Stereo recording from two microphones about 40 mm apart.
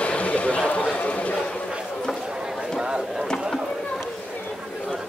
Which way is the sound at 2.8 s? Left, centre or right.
Right.